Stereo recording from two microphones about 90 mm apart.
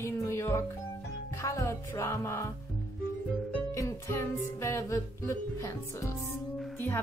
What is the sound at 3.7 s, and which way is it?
Music, 30° left (ahead or behind).